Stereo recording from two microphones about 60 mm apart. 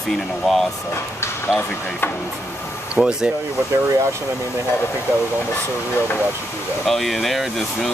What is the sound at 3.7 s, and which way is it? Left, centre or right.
Speech, right.